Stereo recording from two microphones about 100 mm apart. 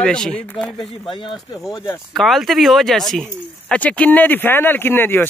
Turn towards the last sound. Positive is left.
turn(degrees=20)  # may be behind; listen again after turning